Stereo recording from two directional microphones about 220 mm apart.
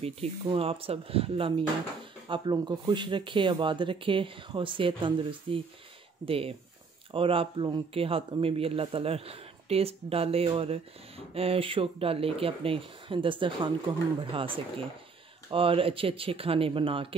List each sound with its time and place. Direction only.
0.0 s speech: 25° right (ahead or behind)